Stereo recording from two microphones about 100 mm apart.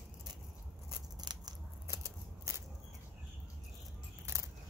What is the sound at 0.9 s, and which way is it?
Scissors, 45° right (ahead or behind).